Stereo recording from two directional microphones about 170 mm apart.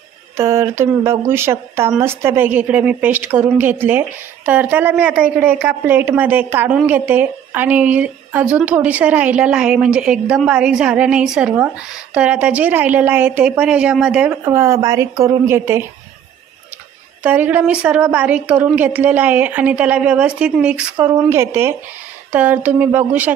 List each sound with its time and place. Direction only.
0.4 s a woman's voice: 15° right (ahead or behind)
14.4 s a woman's voice: 15° right (ahead or behind)
17.2 s a woman's voice: 10° right (ahead or behind)
20.9 s a woman's voice: 15° right (ahead or behind)